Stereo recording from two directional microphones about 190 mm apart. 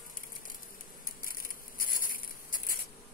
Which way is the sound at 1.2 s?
50° left (ahead or behind).